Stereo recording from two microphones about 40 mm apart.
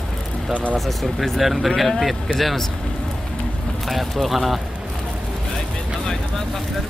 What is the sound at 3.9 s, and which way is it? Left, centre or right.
Speech, centre.